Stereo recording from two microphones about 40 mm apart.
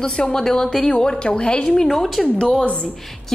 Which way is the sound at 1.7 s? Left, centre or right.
Centre.